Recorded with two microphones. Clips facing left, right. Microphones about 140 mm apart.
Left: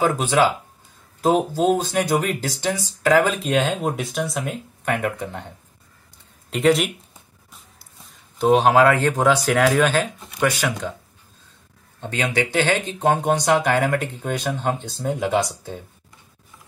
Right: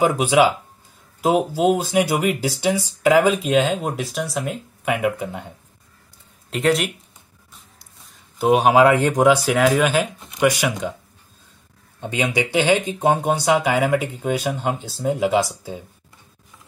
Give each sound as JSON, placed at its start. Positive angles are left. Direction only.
{"t": 0.0, "sound": "speech", "side_deg": -10}
{"t": 3.5, "sound": "speech", "side_deg": 0}
{"t": 6.5, "sound": "speech", "side_deg": 0}
{"t": 8.4, "sound": "speech", "side_deg": -10}
{"t": 12.0, "sound": "speech", "side_deg": -15}